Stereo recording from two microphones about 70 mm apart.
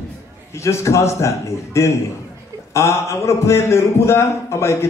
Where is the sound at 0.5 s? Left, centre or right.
Left.